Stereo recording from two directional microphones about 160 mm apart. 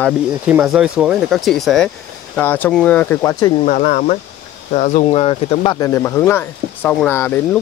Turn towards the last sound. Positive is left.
turn(degrees=10)  # may be behind; listen again after turning